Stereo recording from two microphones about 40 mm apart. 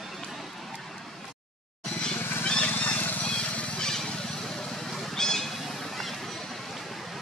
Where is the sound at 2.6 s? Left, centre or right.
Left.